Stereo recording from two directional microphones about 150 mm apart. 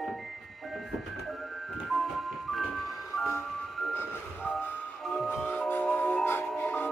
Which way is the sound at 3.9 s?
15° left (ahead or behind).